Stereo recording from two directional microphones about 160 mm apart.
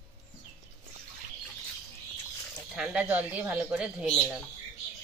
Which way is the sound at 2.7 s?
5° right (ahead or behind).